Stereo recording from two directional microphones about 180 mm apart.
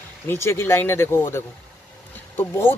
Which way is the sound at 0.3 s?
15° left (ahead or behind).